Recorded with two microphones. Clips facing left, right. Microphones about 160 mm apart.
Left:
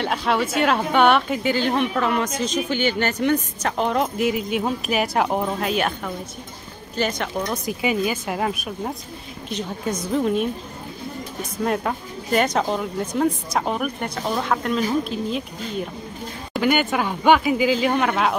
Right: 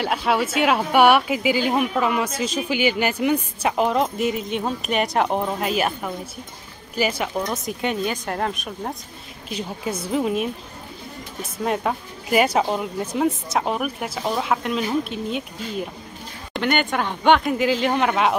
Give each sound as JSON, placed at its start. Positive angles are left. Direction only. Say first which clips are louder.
{"t": 0.0, "sound": "speech", "louder": "even", "side_deg": -5}
{"t": 9.5, "sound": "a woman's voice", "louder": "left 1 dB", "side_deg": -10}
{"t": 11.6, "sound": "speech", "louder": "even", "side_deg": 0}